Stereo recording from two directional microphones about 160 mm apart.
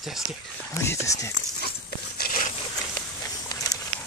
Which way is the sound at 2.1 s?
70° left (ahead or behind).